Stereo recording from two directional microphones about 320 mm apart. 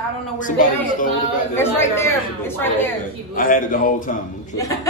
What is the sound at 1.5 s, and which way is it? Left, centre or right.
A woman's voice, centre.